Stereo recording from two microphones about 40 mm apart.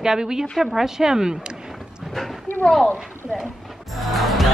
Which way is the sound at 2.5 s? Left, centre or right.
Left.